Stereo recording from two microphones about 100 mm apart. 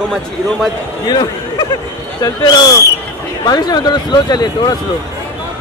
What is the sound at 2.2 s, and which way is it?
Speech, 35° left (ahead or behind).